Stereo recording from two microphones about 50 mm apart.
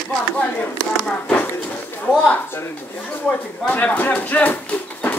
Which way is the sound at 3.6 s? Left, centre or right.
Left.